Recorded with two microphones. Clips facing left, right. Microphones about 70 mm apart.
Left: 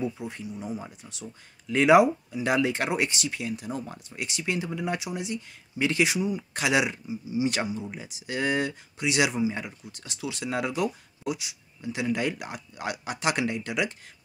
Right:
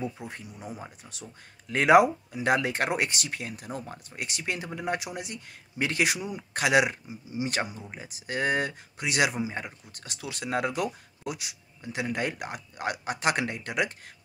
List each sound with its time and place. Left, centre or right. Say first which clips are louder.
0.2 s speech: left 4 dB; right
1.7 s speech: left 1 dB; right